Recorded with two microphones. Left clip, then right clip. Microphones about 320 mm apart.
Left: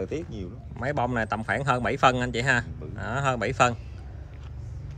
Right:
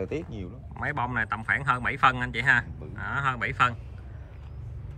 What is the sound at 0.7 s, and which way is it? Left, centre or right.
Speech, centre.